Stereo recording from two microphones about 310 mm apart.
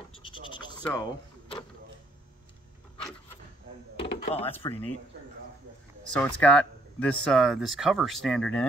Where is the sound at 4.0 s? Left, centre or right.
Centre.